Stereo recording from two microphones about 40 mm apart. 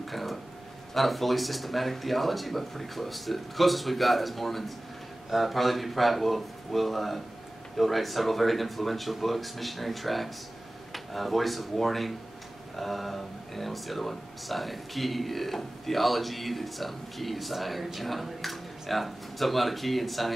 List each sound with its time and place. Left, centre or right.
0.0 s speech: centre